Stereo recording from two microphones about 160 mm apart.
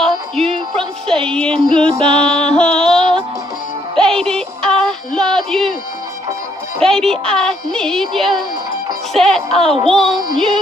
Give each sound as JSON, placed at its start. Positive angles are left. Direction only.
{"t": 0.7, "sound": "music", "side_deg": 5}
{"t": 2.0, "sound": "music", "side_deg": -35}
{"t": 2.4, "sound": "music", "side_deg": 5}
{"t": 6.8, "sound": "speech", "side_deg": 5}